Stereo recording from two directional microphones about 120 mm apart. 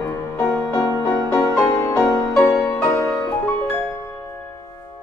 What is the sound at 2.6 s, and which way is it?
Music, 10° left (ahead or behind).